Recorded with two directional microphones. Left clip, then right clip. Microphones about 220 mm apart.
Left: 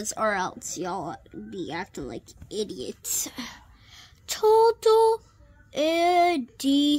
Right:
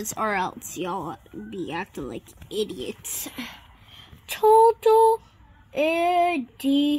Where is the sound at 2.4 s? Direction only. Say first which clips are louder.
Right 3 dB; centre (ahead or behind).